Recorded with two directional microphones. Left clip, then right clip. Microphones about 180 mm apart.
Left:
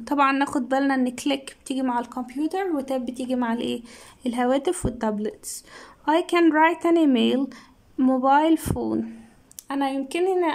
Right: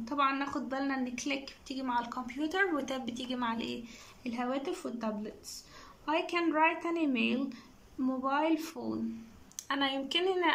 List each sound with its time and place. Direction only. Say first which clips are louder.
0.0 s a woman's voice: left 10 dB; 55° left (ahead or behind); by 3.6 s 35° left (ahead or behind)
4.2 s a woman's voice: left 13 dB; 50° left (ahead or behind)
9.6 s a woman's voice: left 6 dB; 30° left (ahead or behind)